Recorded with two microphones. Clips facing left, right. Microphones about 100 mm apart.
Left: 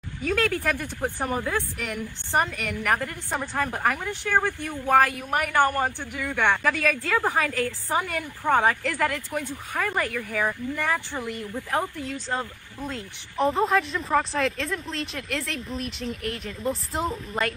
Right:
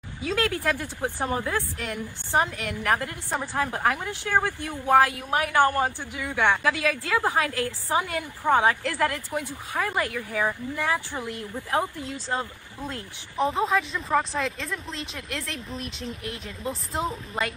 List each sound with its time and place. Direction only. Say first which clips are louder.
0.2 s a woman's voice: left 1 dB; 15° right (ahead or behind)
13.4 s speech: left 2 dB; centre (ahead or behind)